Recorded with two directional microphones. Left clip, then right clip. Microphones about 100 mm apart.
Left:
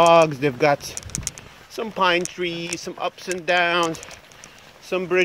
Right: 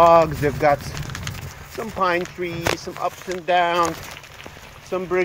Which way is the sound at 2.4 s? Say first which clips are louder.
Right 3 dB; 35° left (ahead or behind).